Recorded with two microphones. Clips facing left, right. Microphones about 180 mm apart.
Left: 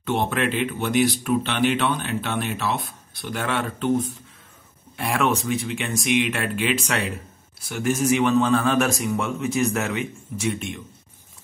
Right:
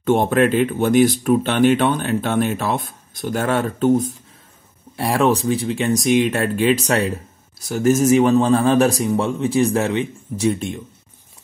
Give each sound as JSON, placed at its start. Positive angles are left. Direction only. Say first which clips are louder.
{"t": 0.0, "sound": "speech", "louder": "right 8 dB", "side_deg": -45}